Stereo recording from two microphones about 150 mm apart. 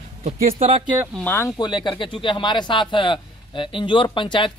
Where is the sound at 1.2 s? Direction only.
15° left (ahead or behind).